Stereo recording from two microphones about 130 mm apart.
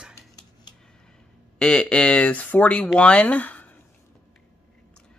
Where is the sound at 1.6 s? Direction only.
5° left (ahead or behind).